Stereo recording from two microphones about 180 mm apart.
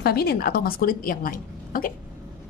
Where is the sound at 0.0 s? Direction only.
60° left (ahead or behind).